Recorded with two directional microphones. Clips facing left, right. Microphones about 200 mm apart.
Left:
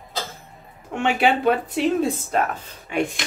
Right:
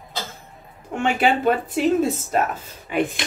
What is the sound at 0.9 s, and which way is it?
Speech, centre (ahead or behind).